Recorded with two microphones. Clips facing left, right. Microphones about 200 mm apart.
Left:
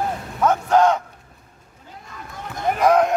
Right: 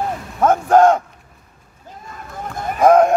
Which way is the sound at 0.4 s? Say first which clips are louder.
Right 4 dB; 50° right (ahead or behind).